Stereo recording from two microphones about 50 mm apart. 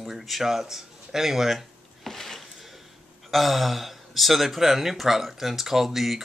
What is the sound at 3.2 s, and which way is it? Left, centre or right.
Speech, centre.